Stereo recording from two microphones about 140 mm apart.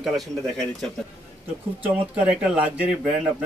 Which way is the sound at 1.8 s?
10° right (ahead or behind).